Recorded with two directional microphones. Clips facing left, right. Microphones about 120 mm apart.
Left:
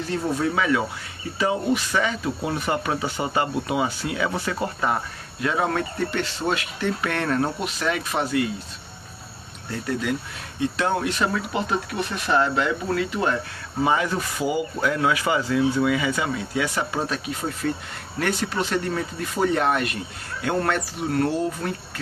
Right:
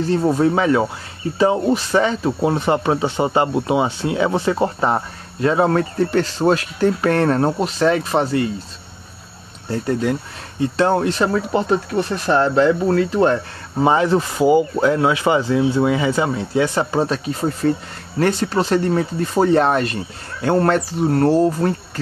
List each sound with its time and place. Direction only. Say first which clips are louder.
0.0 s speech: right 8 dB; 35° right (ahead or behind)
9.7 s speech: right 6 dB; 35° right (ahead or behind)